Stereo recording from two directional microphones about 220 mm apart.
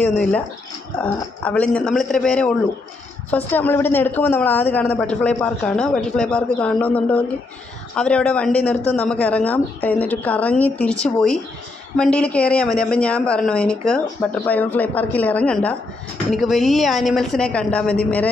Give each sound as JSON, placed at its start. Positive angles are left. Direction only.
{"t": 0.0, "sound": "speech", "side_deg": 5}